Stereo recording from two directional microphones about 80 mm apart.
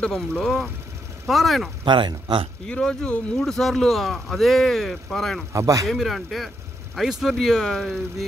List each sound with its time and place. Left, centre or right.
0.0 s speech: centre
1.9 s speech: right
2.6 s speech: centre
5.5 s speech: right
5.9 s speech: centre